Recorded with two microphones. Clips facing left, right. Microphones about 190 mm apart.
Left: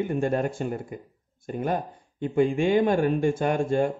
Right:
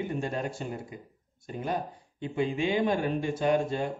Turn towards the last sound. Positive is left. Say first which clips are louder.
# left 3 dB
turn(degrees=50)  # may be behind; listen again after turning